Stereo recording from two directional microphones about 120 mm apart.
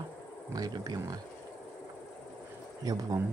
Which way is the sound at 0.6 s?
35° right (ahead or behind).